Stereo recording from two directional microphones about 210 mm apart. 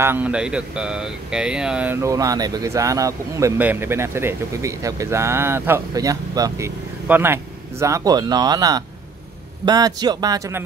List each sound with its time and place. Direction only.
0.0 s speech: 10° right (ahead or behind)